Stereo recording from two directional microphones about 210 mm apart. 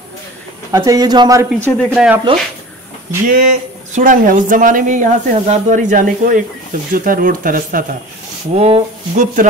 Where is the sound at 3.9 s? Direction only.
40° right (ahead or behind).